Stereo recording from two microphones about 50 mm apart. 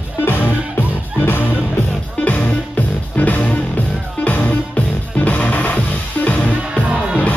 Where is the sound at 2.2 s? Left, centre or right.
Left.